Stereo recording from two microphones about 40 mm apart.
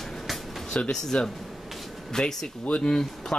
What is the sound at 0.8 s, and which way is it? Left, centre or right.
Speech, centre.